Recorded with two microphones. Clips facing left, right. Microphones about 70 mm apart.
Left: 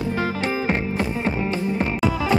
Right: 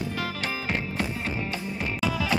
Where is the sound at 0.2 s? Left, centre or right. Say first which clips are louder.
Left 7 dB; left.